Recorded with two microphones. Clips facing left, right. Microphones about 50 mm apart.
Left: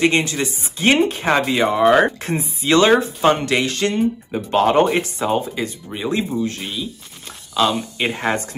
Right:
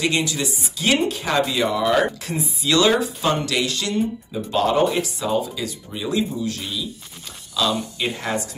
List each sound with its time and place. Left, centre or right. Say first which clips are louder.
0.0 s speech: left 4 dB; left